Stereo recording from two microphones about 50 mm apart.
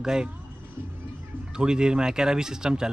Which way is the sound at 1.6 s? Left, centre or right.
Centre.